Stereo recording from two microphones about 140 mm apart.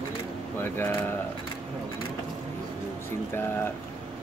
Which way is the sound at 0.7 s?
15° left (ahead or behind).